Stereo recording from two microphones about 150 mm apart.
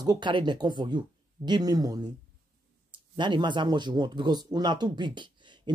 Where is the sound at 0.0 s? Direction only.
30° right (ahead or behind).